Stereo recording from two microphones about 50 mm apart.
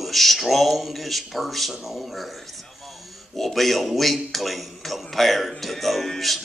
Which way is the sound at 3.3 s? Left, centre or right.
Centre.